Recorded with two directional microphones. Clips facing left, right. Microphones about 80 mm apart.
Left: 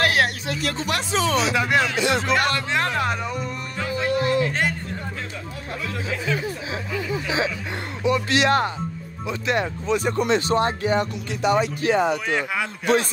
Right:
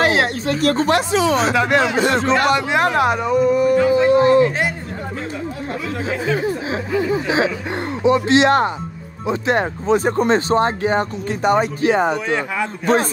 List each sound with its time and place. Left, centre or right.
0.0 s a sound: right
0.5 s a man's voice: right
2.4 s a man's voice: centre
3.7 s speech: right
6.0 s speech: right